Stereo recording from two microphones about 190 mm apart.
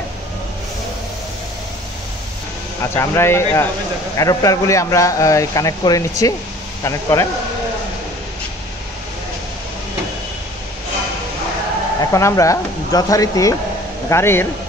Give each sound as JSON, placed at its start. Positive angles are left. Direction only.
{"t": 2.8, "sound": "speech", "side_deg": 15}
{"t": 12.0, "sound": "speech", "side_deg": 15}